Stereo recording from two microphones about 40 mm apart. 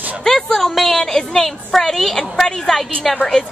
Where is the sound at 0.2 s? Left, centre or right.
Centre.